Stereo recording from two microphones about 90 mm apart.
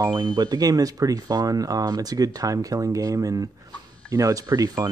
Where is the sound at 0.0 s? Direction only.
45° right (ahead or behind).